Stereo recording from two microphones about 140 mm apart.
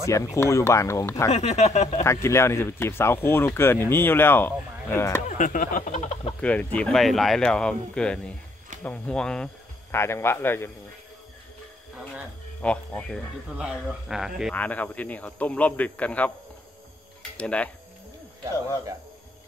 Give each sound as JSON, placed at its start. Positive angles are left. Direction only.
{"t": 0.0, "sound": "speech", "side_deg": 20}
{"t": 1.3, "sound": "speech", "side_deg": 50}
{"t": 2.2, "sound": "speech", "side_deg": 20}
{"t": 5.4, "sound": "a sound", "side_deg": 70}
{"t": 6.4, "sound": "speech", "side_deg": 10}
{"t": 9.8, "sound": "speech", "side_deg": 20}
{"t": 12.6, "sound": "a man's voice", "side_deg": 5}
{"t": 13.6, "sound": "a man's voice", "side_deg": -5}
{"t": 14.5, "sound": "speech", "side_deg": 10}
{"t": 17.4, "sound": "speech", "side_deg": 10}